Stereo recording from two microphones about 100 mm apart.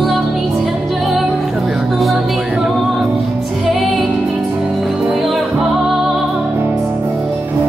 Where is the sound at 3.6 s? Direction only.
5° left (ahead or behind).